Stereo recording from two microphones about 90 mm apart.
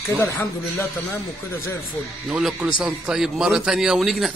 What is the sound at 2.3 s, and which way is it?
A man's voice, 5° right (ahead or behind).